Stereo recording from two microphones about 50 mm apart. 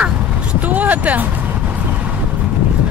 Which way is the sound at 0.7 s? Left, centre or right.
Right.